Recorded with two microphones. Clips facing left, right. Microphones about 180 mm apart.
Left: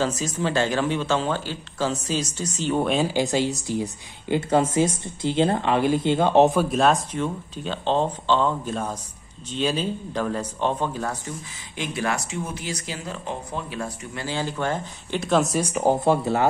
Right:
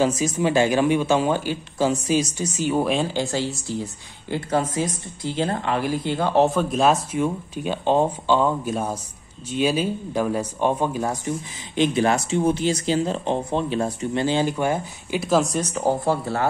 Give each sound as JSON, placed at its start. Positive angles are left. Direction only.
{"t": 0.0, "sound": "speech", "side_deg": -10}
{"t": 3.1, "sound": "speech", "side_deg": 15}
{"t": 6.6, "sound": "speech", "side_deg": 0}